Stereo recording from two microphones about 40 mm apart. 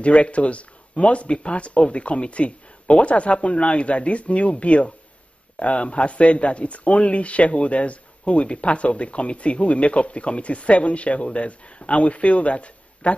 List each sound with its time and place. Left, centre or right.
0.0 s speech: left